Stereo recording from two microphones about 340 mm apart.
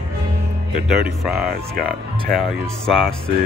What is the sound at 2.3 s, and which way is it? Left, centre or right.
Speech, centre.